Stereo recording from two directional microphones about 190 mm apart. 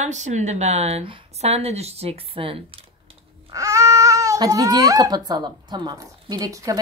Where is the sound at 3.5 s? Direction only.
15° right (ahead or behind).